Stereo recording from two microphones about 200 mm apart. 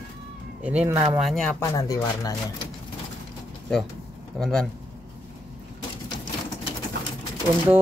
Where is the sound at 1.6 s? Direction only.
15° left (ahead or behind).